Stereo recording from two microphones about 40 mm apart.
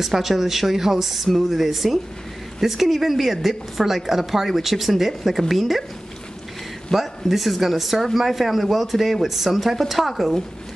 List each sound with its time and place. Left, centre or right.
0.0 s speech: centre
6.9 s speech: centre